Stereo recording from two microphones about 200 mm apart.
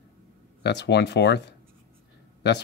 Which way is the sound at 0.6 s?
55° left (ahead or behind).